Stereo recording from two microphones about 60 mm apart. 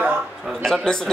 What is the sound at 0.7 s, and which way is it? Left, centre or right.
Speech, centre.